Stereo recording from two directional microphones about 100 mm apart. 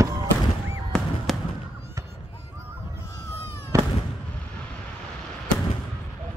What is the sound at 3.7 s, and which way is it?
Fireworks, 30° right (ahead or behind).